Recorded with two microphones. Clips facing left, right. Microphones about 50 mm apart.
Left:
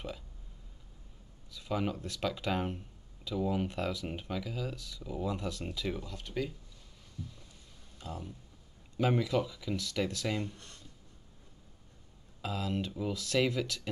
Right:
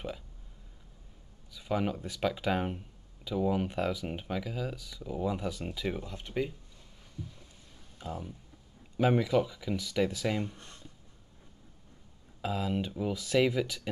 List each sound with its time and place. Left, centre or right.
1.5 s speech: centre
7.2 s a sound: centre
8.0 s speech: centre
12.4 s speech: centre